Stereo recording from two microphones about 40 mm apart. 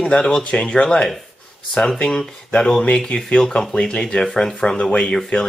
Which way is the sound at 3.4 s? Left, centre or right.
Centre.